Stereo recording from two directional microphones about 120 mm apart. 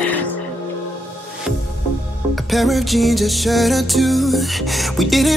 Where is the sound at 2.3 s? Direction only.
Centre (ahead or behind).